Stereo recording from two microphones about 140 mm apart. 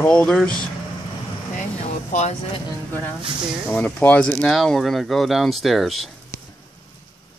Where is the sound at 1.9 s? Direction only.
60° left (ahead or behind).